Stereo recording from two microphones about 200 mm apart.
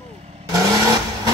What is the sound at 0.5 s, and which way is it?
Vehicle, 15° right (ahead or behind).